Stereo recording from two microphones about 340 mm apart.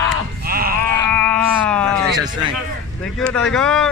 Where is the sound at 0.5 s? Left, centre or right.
Right.